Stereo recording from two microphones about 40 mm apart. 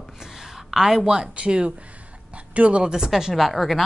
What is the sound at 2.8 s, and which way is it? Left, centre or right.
Speech, centre.